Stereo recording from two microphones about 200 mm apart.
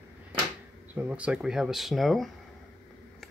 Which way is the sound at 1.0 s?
5° right (ahead or behind).